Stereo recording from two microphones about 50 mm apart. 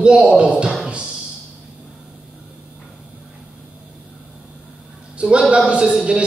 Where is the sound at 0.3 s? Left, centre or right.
Right.